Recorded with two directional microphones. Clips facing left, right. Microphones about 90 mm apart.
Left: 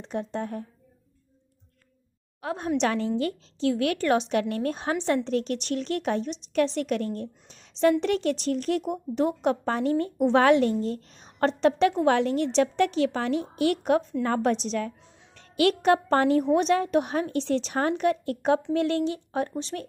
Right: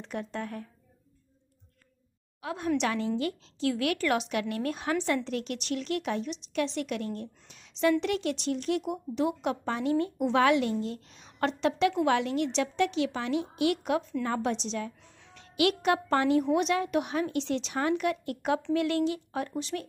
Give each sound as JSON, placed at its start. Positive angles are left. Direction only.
{"t": 0.0, "sound": "speech", "side_deg": 25}
{"t": 2.4, "sound": "a woman's voice", "side_deg": 35}